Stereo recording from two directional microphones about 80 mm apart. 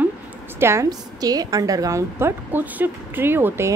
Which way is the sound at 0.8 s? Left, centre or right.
Right.